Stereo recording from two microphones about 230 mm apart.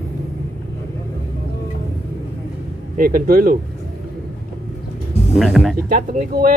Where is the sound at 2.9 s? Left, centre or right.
Right.